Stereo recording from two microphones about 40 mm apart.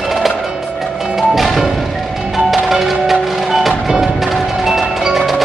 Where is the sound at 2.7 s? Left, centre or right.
Centre.